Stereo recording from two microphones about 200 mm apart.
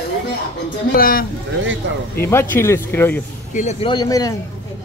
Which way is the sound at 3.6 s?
25° left (ahead or behind).